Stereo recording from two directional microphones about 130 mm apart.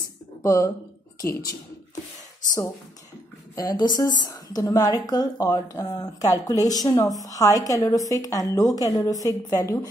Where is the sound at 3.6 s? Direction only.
30° left (ahead or behind).